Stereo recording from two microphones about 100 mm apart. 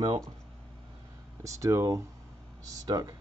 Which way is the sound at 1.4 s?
30° right (ahead or behind).